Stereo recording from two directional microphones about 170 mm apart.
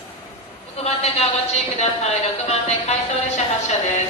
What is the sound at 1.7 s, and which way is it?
Music, 40° left (ahead or behind).